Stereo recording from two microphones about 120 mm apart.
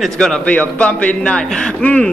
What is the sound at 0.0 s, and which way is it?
A man's voice, 5° left (ahead or behind).